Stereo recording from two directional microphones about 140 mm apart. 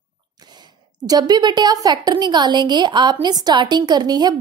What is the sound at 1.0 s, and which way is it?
A woman's voice, 30° right (ahead or behind).